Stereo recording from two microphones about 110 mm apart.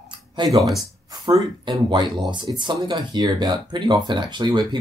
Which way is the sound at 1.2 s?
45° right (ahead or behind).